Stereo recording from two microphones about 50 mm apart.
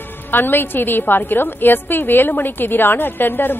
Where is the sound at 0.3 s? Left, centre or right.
Left.